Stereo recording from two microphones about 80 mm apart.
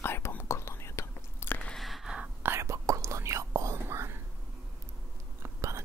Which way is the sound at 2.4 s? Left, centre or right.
Right.